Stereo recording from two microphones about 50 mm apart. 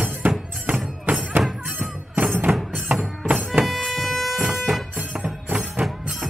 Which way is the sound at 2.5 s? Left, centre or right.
Centre.